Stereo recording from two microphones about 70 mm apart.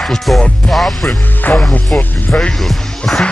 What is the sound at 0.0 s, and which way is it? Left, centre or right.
Music, centre.